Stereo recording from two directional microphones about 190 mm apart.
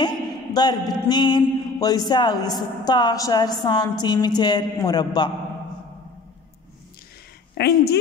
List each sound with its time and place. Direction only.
0.0 s a man's voice: 20° left (ahead or behind)
7.5 s speech: 60° left (ahead or behind)